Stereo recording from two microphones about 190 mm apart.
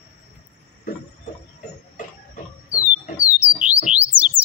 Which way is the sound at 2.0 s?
45° left (ahead or behind).